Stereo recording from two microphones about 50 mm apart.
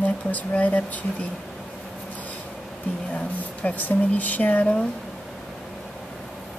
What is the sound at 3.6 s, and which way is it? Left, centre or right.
Speech, left.